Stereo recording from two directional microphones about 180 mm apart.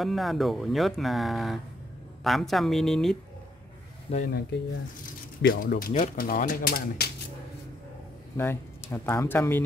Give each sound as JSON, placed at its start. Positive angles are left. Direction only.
{"t": 0.0, "sound": "speech", "side_deg": 0}
{"t": 4.3, "sound": "speech", "side_deg": 60}
{"t": 8.4, "sound": "speech", "side_deg": 15}